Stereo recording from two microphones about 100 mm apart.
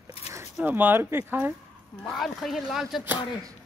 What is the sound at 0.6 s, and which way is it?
Speech, 20° right (ahead or behind).